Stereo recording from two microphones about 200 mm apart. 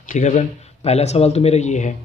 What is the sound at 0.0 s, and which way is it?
A man's voice, 40° left (ahead or behind).